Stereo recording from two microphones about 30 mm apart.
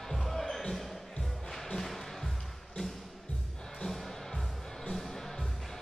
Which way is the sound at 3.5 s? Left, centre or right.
Centre.